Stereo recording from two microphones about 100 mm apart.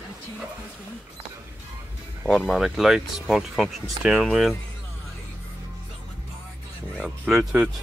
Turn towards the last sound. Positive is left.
turn(degrees=-10)  # may be behind; listen again after turning